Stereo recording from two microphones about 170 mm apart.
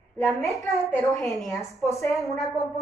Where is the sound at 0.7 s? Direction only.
Centre (ahead or behind).